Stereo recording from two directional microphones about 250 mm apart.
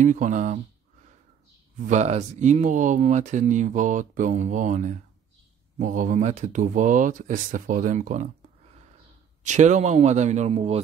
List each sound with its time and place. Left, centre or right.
0.0 s speech: right
1.9 s speech: right
9.4 s speech: right